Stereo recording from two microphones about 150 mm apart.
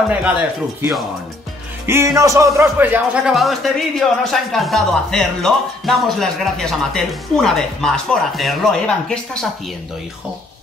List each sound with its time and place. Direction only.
0.1 s speech: 10° right (ahead or behind)
1.9 s speech: 20° right (ahead or behind)
3.3 s speech: centre (ahead or behind)